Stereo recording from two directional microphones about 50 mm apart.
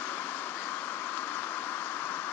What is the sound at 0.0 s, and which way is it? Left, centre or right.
Vehicle, left.